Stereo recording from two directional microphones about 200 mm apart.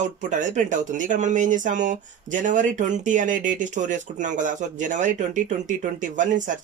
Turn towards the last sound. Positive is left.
turn(degrees=-40)  # may be behind; listen again after turning